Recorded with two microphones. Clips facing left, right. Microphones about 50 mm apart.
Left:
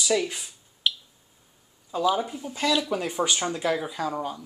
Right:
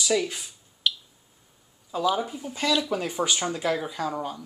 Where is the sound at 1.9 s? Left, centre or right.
Centre.